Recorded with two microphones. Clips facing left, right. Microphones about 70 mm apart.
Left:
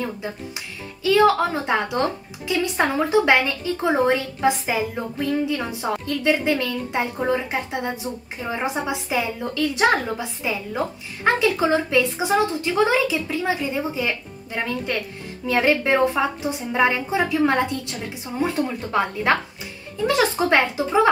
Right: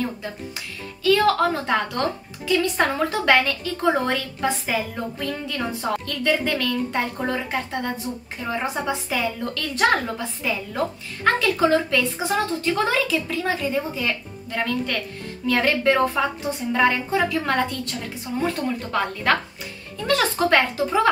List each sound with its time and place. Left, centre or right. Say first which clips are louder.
0.0 s speech: even; centre